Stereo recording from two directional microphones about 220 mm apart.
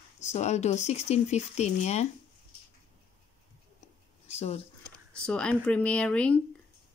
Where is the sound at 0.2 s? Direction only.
30° left (ahead or behind).